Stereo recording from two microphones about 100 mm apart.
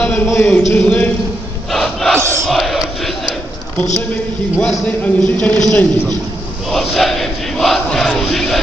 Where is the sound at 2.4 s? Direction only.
Centre (ahead or behind).